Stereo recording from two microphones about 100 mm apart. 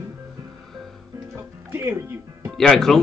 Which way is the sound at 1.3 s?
25° right (ahead or behind).